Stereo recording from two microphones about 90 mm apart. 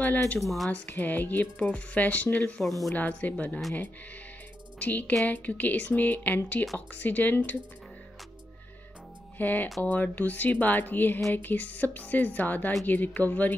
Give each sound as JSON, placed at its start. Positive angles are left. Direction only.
{"t": 0.0, "sound": "speech", "side_deg": 15}
{"t": 0.4, "sound": "speech", "side_deg": 0}
{"t": 0.7, "sound": "speech", "side_deg": 20}
{"t": 4.7, "sound": "a woman's voice", "side_deg": 20}
{"t": 9.4, "sound": "a woman's voice", "side_deg": 20}